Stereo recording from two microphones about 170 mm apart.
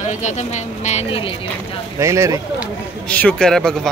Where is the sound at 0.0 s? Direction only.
45° left (ahead or behind).